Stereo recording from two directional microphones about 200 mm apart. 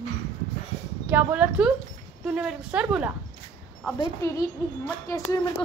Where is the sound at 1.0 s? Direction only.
5° right (ahead or behind).